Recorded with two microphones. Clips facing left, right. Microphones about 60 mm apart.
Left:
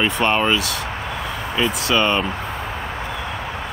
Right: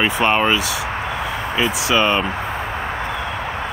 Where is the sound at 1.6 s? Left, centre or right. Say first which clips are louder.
Right 1 dB; centre.